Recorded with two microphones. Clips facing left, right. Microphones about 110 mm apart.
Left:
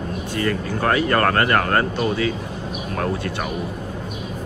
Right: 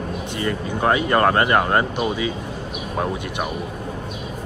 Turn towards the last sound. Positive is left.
turn(degrees=-15)  # may be behind; listen again after turning